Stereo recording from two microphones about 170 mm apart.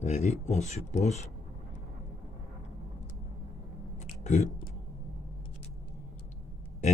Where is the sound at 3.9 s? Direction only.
45° left (ahead or behind).